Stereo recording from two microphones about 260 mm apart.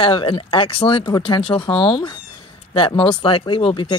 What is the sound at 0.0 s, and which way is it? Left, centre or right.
Speech, centre.